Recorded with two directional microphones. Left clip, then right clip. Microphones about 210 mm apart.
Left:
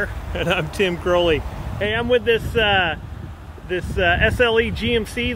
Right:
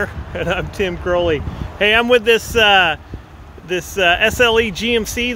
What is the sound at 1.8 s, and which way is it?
Speech, 45° right (ahead or behind).